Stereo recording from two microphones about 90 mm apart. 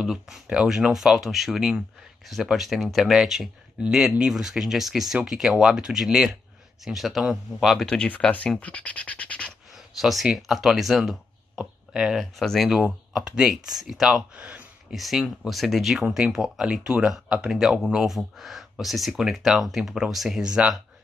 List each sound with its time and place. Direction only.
0.0 s speech: 5° right (ahead or behind); by 9.5 s 15° left (ahead or behind)
9.8 s speech: centre (ahead or behind)
14.3 s a sound: 15° right (ahead or behind)
15.0 s speech: centre (ahead or behind)